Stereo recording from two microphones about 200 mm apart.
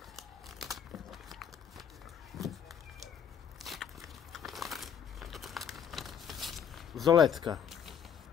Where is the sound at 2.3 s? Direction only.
Centre (ahead or behind).